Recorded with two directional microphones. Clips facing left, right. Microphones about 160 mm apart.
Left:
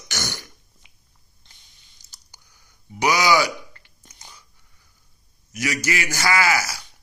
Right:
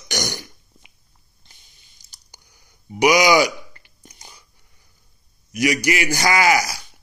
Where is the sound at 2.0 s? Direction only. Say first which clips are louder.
Right 1 dB; 15° right (ahead or behind).